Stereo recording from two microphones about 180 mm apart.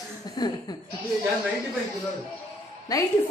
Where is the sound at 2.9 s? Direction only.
20° left (ahead or behind).